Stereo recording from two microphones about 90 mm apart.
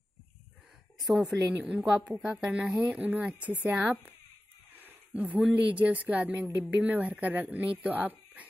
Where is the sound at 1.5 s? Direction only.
15° right (ahead or behind).